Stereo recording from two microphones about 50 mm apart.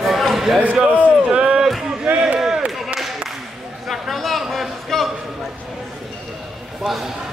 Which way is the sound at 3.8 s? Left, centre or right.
Centre.